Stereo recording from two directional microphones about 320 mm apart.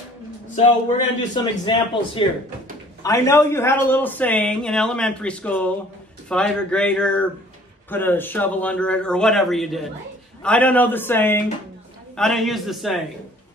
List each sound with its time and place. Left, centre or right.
0.6 s a man's voice: centre